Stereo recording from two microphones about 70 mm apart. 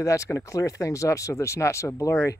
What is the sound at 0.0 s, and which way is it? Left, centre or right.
Speech, left.